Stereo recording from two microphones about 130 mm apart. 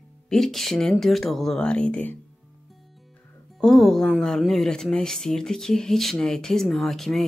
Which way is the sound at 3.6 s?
Centre (ahead or behind).